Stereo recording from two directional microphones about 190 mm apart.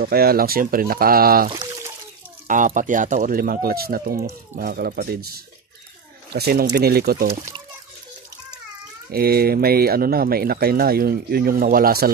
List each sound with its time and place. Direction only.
0.0 s speech: 55° right (ahead or behind)
1.5 s a sound: 25° right (ahead or behind)
2.4 s speech: 45° right (ahead or behind)
9.1 s speech: 50° right (ahead or behind)